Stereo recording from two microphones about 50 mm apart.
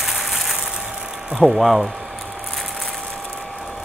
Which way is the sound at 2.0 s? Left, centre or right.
Centre.